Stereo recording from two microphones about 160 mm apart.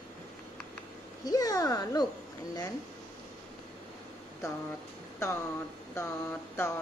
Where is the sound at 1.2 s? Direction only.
25° left (ahead or behind).